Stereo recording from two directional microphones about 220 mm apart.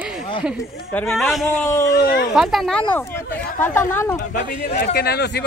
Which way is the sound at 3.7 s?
10° left (ahead or behind).